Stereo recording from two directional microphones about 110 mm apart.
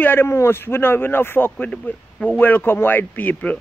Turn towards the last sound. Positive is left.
turn(degrees=15)  # may be behind; listen again after turning